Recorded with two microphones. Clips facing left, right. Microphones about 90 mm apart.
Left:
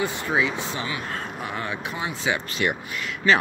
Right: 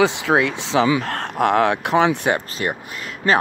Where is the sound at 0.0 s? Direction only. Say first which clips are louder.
Right 7 dB; 90° right.